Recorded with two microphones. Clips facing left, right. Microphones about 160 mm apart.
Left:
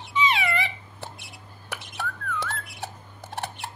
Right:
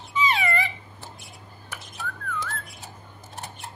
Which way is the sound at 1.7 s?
70° left (ahead or behind).